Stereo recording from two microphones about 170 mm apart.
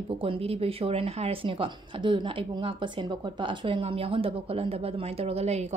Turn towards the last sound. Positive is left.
turn(degrees=-40)  # may be behind; listen again after turning